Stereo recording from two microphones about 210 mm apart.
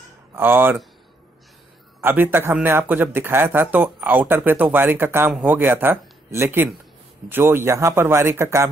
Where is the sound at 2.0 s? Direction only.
10° right (ahead or behind).